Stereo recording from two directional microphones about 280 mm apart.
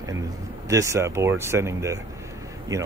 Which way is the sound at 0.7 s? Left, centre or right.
Centre.